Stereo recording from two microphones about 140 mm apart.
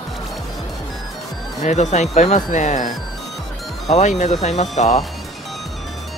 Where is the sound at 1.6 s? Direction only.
55° left (ahead or behind).